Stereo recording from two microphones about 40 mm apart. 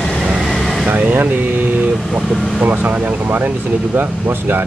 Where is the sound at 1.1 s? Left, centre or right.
Right.